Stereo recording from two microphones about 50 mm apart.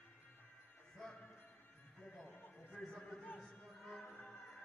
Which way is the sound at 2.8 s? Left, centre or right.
Centre.